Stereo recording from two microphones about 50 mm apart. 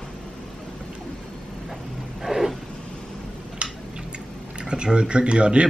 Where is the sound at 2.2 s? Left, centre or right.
Centre.